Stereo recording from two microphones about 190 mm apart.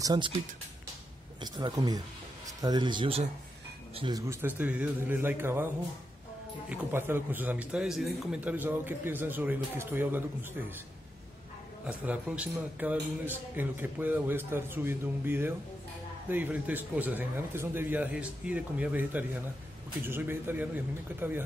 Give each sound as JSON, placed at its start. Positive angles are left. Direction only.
{"t": 0.0, "sound": "speech", "side_deg": -20}
{"t": 1.4, "sound": "speech", "side_deg": -20}
{"t": 4.3, "sound": "speech", "side_deg": -10}
{"t": 6.7, "sound": "speech", "side_deg": -10}
{"t": 11.8, "sound": "speech", "side_deg": -5}